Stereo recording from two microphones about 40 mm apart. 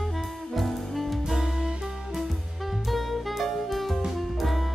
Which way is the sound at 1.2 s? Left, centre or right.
Centre.